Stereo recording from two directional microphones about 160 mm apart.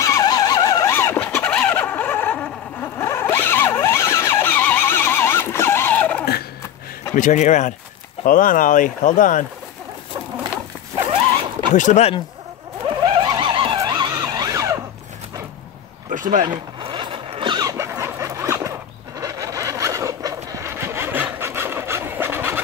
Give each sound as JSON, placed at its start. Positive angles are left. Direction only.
{"t": 0.0, "sound": "vehicle", "side_deg": 20}
{"t": 7.2, "sound": "speech", "side_deg": 50}
{"t": 11.7, "sound": "speech", "side_deg": 50}
{"t": 13.2, "sound": "a sound", "side_deg": -30}
{"t": 16.1, "sound": "a sound", "side_deg": -55}
{"t": 16.4, "sound": "zipper", "side_deg": -30}
{"t": 19.1, "sound": "vehicle", "side_deg": -20}